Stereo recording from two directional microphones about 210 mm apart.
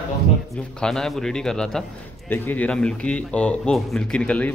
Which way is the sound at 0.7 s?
5° left (ahead or behind).